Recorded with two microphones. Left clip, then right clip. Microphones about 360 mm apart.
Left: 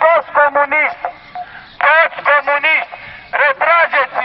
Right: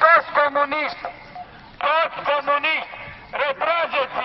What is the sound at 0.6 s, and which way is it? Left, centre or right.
Music, left.